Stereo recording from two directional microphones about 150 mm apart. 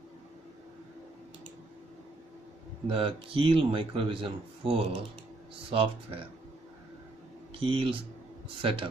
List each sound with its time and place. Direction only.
2.9 s a man's voice: 35° right (ahead or behind)
7.6 s a man's voice: 35° right (ahead or behind)